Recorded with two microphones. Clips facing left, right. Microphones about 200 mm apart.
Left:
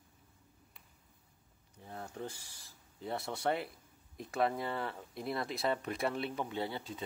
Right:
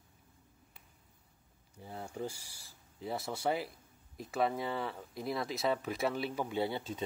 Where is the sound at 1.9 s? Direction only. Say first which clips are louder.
Right 3 dB; 10° right (ahead or behind).